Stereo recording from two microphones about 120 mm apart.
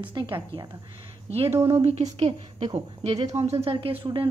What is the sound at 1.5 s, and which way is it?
Speech, 25° right (ahead or behind).